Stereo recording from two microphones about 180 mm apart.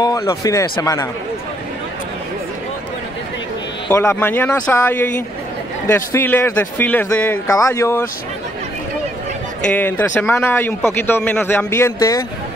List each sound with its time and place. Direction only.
0.0 s speech: 20° left (ahead or behind)
3.9 s speech: 15° left (ahead or behind)
9.7 s speech: 10° left (ahead or behind)